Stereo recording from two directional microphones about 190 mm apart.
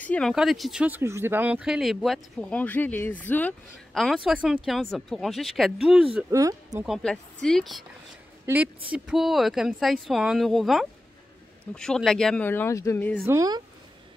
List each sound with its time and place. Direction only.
0.0 s speech: 5° left (ahead or behind)
6.3 s speech: 15° right (ahead or behind)
7.4 s speech: centre (ahead or behind)
8.5 s speech: 15° right (ahead or behind); by 13.2 s 10° left (ahead or behind)
13.2 s speech: 15° right (ahead or behind)